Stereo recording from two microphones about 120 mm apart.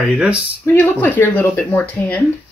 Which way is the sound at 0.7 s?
15° left (ahead or behind).